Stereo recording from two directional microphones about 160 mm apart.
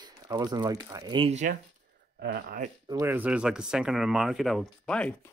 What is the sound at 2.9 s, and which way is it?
Speech, 15° right (ahead or behind).